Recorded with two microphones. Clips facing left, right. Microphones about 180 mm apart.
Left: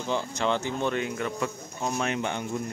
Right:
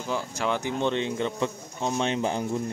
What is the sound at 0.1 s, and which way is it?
Speech, 10° right (ahead or behind).